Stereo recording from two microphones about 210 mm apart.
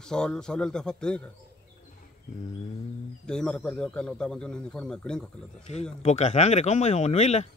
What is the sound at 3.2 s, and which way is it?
A man's voice, 5° left (ahead or behind).